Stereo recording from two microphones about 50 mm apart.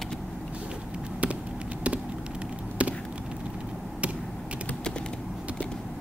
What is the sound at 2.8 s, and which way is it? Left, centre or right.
Chop, right.